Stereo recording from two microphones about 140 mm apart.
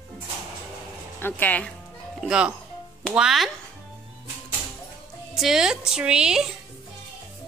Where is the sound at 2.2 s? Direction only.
5° right (ahead or behind).